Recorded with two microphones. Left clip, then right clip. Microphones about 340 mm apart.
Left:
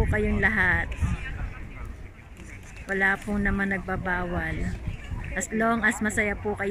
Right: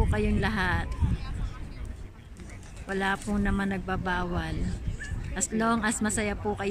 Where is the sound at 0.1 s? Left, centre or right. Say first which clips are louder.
Left 5 dB; centre.